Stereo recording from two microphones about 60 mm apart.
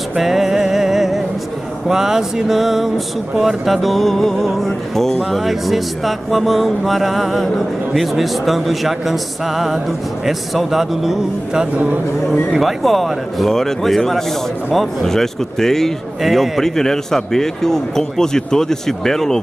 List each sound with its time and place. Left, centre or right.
0.2 s music: centre
1.9 s speech: centre
11.7 s speech: right
12.3 s a man's voice: centre